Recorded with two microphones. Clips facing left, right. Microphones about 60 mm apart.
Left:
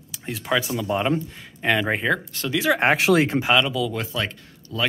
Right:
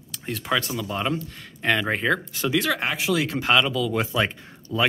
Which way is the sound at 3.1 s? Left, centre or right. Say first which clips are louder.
Left 5 dB; left.